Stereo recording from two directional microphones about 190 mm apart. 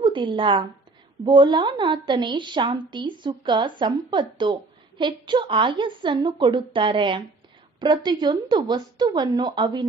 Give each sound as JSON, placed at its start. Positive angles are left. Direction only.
{"t": 0.0, "sound": "a woman's voice", "side_deg": -25}